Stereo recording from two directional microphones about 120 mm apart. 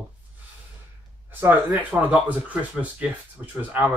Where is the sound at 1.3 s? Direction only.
15° right (ahead or behind).